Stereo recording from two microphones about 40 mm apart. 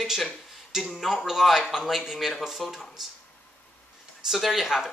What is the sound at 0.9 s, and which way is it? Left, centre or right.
Speech, centre.